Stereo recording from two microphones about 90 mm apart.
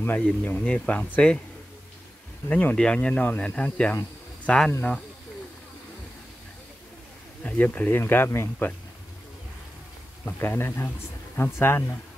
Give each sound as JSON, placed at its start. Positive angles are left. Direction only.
{"t": 0.2, "sound": "speech", "side_deg": 15}
{"t": 2.5, "sound": "speech", "side_deg": 15}
{"t": 7.4, "sound": "speech", "side_deg": 15}
{"t": 10.4, "sound": "speech", "side_deg": 25}